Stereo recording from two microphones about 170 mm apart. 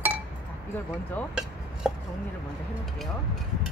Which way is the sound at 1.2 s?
10° left (ahead or behind).